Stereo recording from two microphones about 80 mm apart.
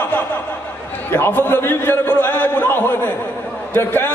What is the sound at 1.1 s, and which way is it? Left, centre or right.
A man's voice, left.